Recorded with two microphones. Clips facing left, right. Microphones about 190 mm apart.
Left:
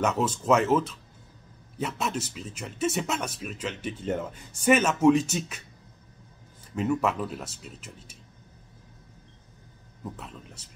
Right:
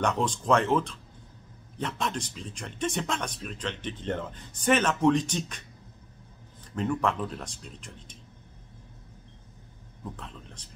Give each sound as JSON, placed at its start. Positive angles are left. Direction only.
{"t": 0.0, "sound": "speech", "side_deg": 5}
{"t": 6.7, "sound": "speech", "side_deg": 5}
{"t": 10.1, "sound": "speech", "side_deg": 5}